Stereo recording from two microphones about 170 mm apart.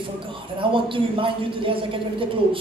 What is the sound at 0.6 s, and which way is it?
A man's voice, 30° right (ahead or behind).